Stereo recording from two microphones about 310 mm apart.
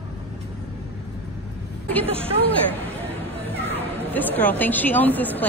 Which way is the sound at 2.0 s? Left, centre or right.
Centre.